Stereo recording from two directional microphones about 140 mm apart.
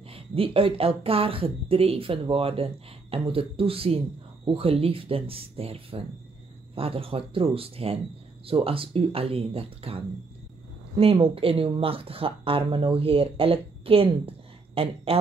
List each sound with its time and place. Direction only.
0.1 s speech: 40° right (ahead or behind)